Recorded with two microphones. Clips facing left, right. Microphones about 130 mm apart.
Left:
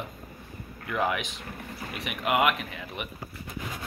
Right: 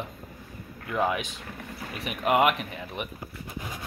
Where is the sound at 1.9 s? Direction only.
40° right (ahead or behind).